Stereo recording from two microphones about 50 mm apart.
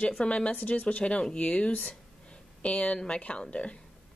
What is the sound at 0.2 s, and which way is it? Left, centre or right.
A woman's voice, left.